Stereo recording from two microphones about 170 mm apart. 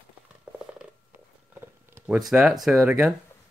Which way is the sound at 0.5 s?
5° right (ahead or behind).